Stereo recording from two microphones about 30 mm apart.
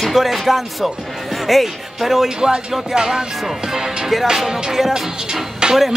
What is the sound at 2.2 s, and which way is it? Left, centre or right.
Speech, right.